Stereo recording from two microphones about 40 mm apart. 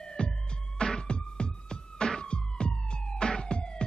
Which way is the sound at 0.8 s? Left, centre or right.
Centre.